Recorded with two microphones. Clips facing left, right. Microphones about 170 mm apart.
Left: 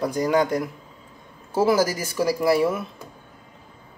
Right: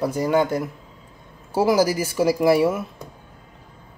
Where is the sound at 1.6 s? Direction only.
15° right (ahead or behind).